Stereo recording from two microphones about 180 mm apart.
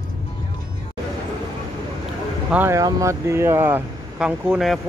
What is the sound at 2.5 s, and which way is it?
Speech, 15° right (ahead or behind).